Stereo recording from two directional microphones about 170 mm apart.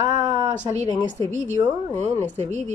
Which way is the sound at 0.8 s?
20° left (ahead or behind).